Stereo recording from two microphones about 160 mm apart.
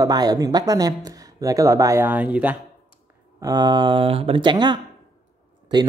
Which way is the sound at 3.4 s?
25° right (ahead or behind).